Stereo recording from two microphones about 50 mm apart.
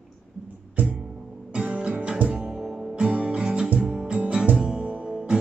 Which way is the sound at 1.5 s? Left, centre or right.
Centre.